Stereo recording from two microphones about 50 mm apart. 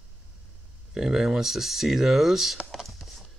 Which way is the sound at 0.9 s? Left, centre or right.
Centre.